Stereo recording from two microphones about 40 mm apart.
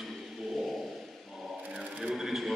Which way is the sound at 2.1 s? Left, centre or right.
Centre.